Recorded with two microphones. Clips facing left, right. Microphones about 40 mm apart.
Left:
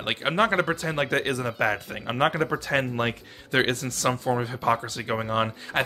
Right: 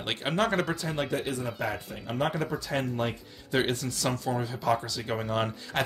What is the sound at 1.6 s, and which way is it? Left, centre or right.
Speech, left.